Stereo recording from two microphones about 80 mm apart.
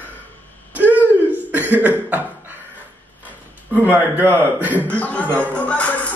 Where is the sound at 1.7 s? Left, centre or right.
Centre.